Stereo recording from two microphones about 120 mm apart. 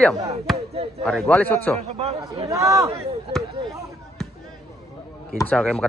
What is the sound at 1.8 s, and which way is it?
Speech, 60° right (ahead or behind).